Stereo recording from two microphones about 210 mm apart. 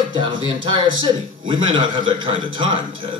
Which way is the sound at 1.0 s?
25° right (ahead or behind).